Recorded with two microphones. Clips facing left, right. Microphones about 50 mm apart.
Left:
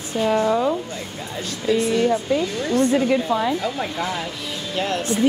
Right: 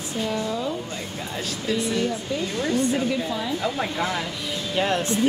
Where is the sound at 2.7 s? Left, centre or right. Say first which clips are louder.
Left 7 dB; left.